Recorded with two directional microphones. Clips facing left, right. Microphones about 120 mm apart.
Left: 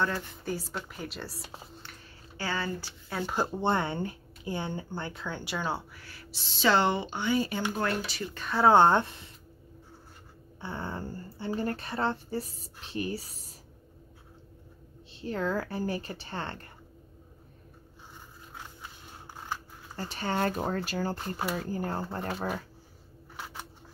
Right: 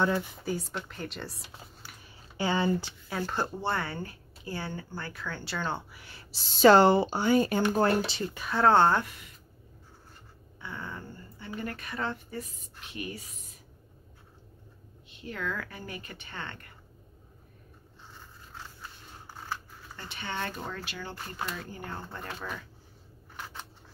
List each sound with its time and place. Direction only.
0.0 s speech: 15° right (ahead or behind)
0.4 s speech: centre (ahead or behind)
2.3 s speech: 20° right (ahead or behind)
3.1 s speech: centre (ahead or behind)
3.3 s speech: 20° left (ahead or behind)
5.9 s a sound: 20° right (ahead or behind)
6.3 s speech: 45° right (ahead or behind)
7.7 s speech: 30° right (ahead or behind)
8.4 s speech: centre (ahead or behind)
8.6 s speech: 15° left (ahead or behind)
10.6 s speech: 30° left (ahead or behind)
15.1 s speech: 30° left (ahead or behind)
18.5 s scissors: 15° left (ahead or behind)
20.0 s speech: 40° left (ahead or behind)